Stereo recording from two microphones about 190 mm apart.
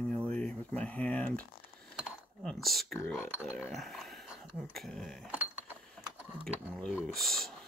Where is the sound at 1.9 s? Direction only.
Centre (ahead or behind).